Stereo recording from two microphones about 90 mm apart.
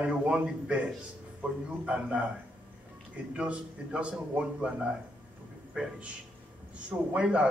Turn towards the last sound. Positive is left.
turn(degrees=-15)  # may be behind; listen again after turning